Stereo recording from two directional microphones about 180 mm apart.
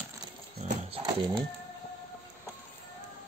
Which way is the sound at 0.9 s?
25° right (ahead or behind).